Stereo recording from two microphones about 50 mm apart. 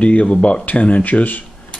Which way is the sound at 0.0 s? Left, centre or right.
Left.